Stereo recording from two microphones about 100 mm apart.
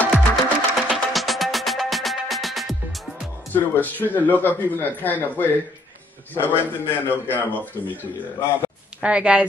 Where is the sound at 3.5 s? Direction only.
20° left (ahead or behind).